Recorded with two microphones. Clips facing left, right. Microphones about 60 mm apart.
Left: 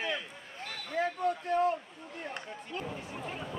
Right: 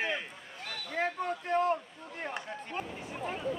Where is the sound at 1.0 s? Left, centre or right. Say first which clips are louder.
Left 2 dB; right.